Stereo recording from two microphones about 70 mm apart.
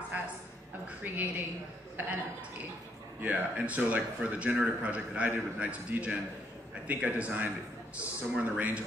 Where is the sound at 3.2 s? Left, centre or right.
Right.